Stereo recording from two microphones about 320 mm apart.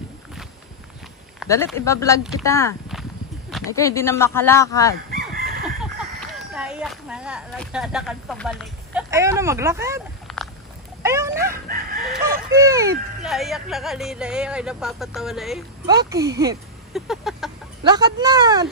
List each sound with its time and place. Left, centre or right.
1.4 s speech: centre
5.1 s a sound: right
5.6 s speech: centre
11.0 s cat: centre
12.0 s speech: centre
16.9 s speech: centre
17.8 s speech: centre